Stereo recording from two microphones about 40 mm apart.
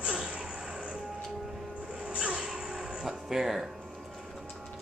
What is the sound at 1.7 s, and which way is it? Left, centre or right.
Music, right.